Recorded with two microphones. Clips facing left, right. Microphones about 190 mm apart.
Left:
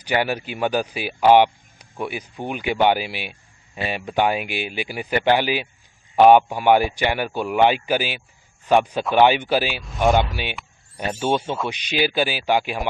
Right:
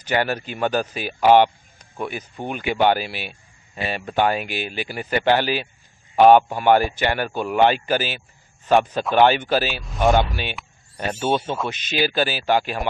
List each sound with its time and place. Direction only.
0.0 s speech: 10° left (ahead or behind)
9.8 s speech: centre (ahead or behind)
11.1 s speech: 10° left (ahead or behind)